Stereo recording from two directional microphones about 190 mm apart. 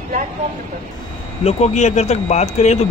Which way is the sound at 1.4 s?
35° left (ahead or behind).